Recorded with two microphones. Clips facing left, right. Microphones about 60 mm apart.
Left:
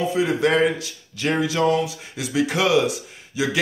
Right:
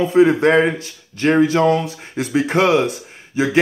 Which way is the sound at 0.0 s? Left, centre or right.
Right.